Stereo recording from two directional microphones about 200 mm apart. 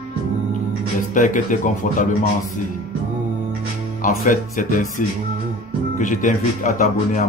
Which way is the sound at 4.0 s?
40° left (ahead or behind).